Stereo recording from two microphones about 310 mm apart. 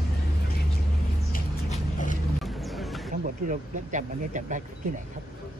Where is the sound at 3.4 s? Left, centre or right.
Right.